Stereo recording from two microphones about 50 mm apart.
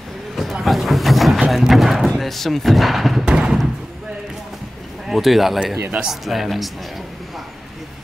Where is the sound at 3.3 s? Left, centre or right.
Centre.